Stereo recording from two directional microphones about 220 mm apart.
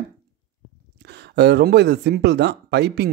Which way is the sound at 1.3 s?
50° right (ahead or behind).